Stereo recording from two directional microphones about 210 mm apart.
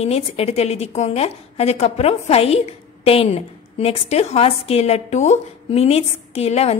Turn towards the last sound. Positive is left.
turn(degrees=30)  # may be behind; listen again after turning